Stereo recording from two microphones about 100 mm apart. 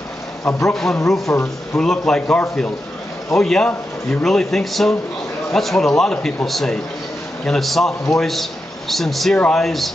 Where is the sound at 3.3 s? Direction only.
5° left (ahead or behind).